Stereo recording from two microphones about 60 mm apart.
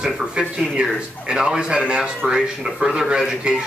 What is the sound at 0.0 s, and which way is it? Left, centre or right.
A man's voice, centre.